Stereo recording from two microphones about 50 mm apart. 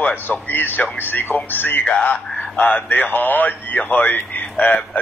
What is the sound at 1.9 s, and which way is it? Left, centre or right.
Speech, left.